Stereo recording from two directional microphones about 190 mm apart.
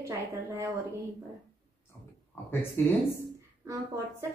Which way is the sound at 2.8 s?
10° left (ahead or behind).